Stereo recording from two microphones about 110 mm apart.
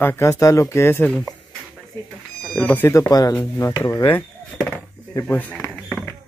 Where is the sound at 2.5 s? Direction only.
10° left (ahead or behind).